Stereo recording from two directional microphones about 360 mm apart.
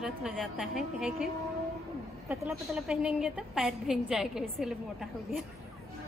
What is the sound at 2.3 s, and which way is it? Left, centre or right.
A woman's voice, centre.